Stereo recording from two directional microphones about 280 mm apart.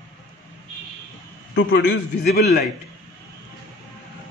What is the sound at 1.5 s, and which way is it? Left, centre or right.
Speech, left.